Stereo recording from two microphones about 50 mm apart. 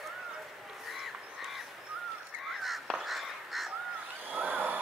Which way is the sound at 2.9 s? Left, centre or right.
Centre.